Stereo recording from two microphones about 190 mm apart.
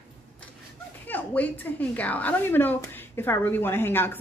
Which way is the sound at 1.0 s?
10° left (ahead or behind).